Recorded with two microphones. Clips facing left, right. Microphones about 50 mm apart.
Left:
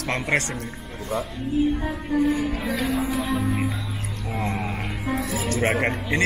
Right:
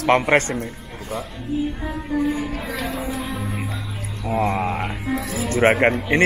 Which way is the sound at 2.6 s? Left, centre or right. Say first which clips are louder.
Left 2 dB; centre.